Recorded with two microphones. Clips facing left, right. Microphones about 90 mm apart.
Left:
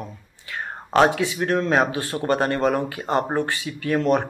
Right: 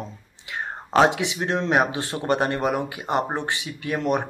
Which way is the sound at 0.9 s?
20° right (ahead or behind).